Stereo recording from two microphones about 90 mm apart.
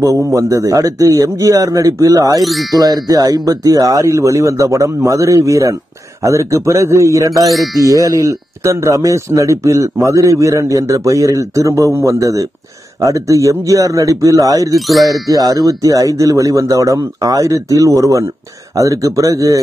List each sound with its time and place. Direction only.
0.0 s speech: 35° right (ahead or behind)
2.4 s speech: centre (ahead or behind)
2.8 s speech: 45° right (ahead or behind)
7.4 s speech: centre (ahead or behind)
7.8 s speech: 40° right (ahead or behind)
14.8 s speech: centre (ahead or behind)
15.2 s speech: 40° right (ahead or behind)